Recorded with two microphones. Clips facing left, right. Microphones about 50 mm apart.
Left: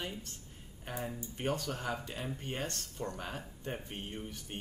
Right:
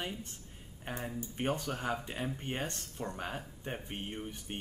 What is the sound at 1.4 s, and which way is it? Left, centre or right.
Speech, right.